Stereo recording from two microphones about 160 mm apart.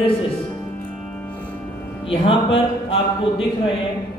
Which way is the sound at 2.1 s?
35° left (ahead or behind).